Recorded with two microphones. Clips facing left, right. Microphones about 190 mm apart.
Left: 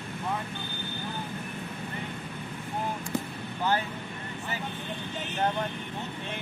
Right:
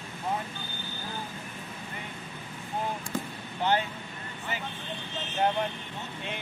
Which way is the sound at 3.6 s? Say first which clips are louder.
Right 1 dB; 20° right (ahead or behind).